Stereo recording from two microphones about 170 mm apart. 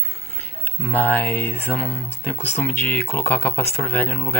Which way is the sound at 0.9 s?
10° left (ahead or behind).